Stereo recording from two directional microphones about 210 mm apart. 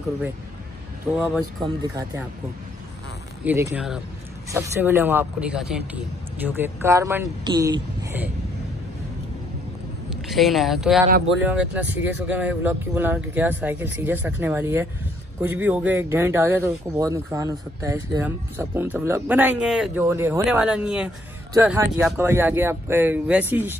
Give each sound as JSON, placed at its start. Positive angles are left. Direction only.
{"t": 1.1, "sound": "speech", "side_deg": 0}
{"t": 3.4, "sound": "speech", "side_deg": -10}
{"t": 10.0, "sound": "speech", "side_deg": 0}